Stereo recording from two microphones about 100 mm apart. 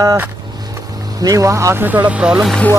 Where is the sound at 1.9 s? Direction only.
15° right (ahead or behind).